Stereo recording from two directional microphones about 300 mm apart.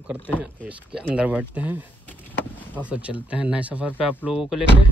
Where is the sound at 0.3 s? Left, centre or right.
Centre.